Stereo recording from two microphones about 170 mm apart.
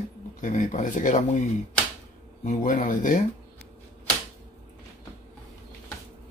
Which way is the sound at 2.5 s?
50° left (ahead or behind).